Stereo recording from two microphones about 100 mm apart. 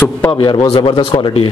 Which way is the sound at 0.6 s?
75° left (ahead or behind).